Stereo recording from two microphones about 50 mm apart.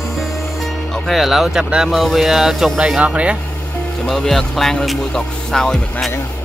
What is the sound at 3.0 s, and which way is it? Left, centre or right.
Speech, right.